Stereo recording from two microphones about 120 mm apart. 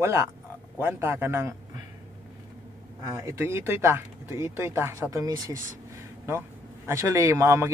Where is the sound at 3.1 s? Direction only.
25° right (ahead or behind).